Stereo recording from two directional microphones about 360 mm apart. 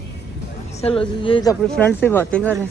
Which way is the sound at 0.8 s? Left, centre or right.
Centre.